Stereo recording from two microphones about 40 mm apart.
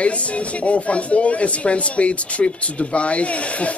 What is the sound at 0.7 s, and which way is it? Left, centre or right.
Speech, left.